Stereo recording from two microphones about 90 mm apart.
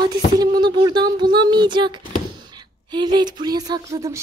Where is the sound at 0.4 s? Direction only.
55° right (ahead or behind).